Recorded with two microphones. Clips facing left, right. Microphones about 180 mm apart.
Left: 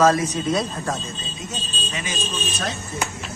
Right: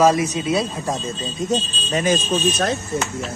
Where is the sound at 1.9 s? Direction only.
45° right (ahead or behind).